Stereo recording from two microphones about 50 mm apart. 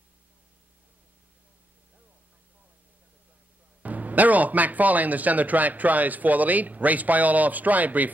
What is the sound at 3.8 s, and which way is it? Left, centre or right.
Speech, right.